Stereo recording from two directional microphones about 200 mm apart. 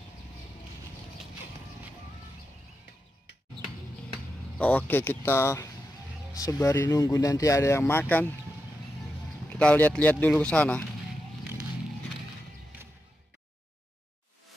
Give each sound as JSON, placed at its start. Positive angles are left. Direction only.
{"t": 4.6, "sound": "speech", "side_deg": 10}
{"t": 9.5, "sound": "speech", "side_deg": 5}